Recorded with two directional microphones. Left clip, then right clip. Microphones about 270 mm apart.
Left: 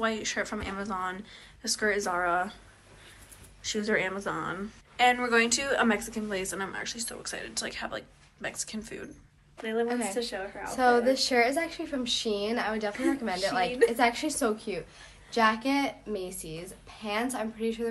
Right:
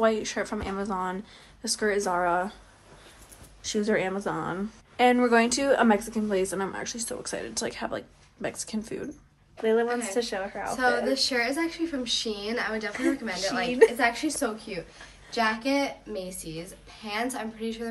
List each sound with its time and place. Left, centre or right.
0.0 s speech: centre
3.6 s a woman's voice: centre
10.7 s a woman's voice: centre